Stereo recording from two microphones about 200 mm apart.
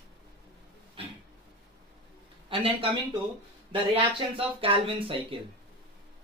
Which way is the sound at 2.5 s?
25° right (ahead or behind).